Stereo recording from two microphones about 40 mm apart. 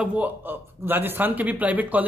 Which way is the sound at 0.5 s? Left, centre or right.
Right.